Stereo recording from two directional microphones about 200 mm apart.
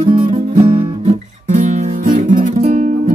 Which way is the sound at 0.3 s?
35° right (ahead or behind).